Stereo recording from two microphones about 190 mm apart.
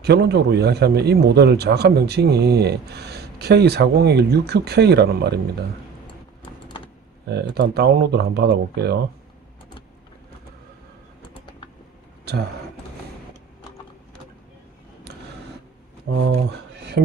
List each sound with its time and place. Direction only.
0.0 s speech: 60° right (ahead or behind)
7.2 s speech: 60° right (ahead or behind)
12.3 s a sound: 60° right (ahead or behind)